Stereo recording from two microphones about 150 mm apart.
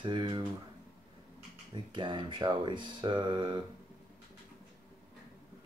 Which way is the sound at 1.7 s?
30° right (ahead or behind).